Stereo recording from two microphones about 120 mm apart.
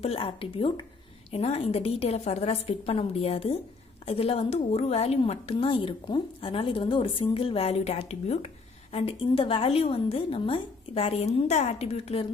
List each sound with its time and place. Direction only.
0.0 s a woman's voice: 55° left (ahead or behind)
1.3 s a woman's voice: 60° left (ahead or behind)
8.9 s a woman's voice: 50° left (ahead or behind)